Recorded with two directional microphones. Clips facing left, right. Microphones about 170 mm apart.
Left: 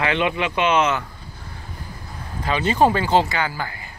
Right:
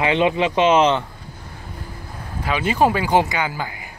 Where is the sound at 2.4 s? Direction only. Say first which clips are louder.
Even; 10° right (ahead or behind).